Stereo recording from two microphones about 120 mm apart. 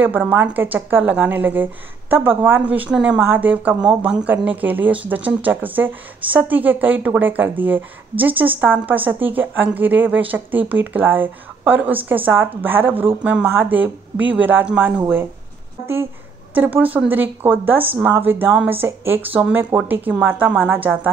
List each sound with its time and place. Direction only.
0.0 s a woman's voice: 15° right (ahead or behind)
16.5 s a woman's voice: 15° right (ahead or behind)